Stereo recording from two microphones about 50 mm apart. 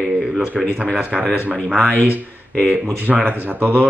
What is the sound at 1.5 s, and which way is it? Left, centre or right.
Speech, left.